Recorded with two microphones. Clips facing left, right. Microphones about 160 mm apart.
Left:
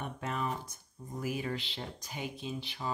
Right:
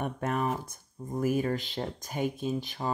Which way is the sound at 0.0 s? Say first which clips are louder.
Right 6 dB; 50° right (ahead or behind).